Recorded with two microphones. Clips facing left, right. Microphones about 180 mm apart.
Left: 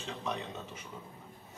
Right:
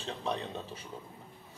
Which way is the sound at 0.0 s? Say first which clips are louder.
Right 2 dB; 30° right (ahead or behind).